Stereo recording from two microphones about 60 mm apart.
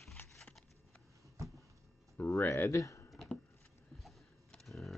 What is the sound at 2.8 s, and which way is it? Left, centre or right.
Typing, left.